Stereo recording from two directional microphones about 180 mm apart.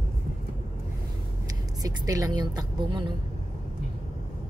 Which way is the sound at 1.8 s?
20° right (ahead or behind).